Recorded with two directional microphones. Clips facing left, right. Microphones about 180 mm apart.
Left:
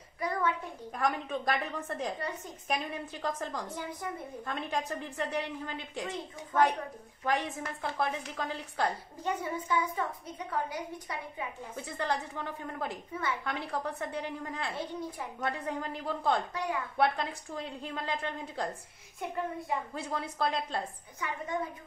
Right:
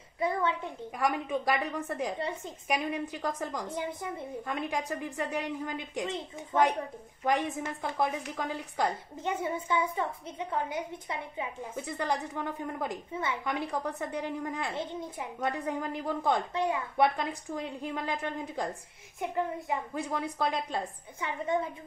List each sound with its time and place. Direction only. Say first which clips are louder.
0.2 s a sound: right 2 dB; 25° right (ahead or behind)
0.9 s a woman's voice: right 2 dB; 10° right (ahead or behind)
2.1 s a woman's voice: right 3 dB; 25° right (ahead or behind)
2.7 s a woman's voice: right 3 dB; 15° right (ahead or behind)
11.7 s a woman's voice: right 1 dB; 15° right (ahead or behind)
19.7 s a woman's voice: right 2 dB; 15° right (ahead or behind)